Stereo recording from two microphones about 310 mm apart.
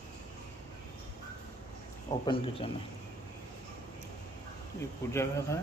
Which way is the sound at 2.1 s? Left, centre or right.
Centre.